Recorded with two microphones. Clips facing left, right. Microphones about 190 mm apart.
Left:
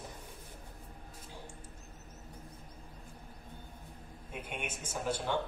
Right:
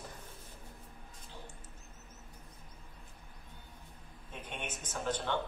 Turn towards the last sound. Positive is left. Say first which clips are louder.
# left 1 dB
turn(degrees=10)  # may be behind; listen again after turning